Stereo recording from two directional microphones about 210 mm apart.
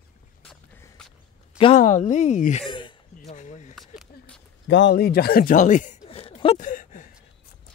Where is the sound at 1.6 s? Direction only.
30° left (ahead or behind).